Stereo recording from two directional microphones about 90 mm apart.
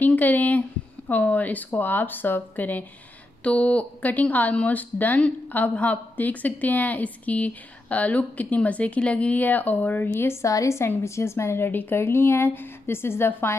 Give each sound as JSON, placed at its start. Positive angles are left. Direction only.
{"t": 0.0, "sound": "speech", "side_deg": 20}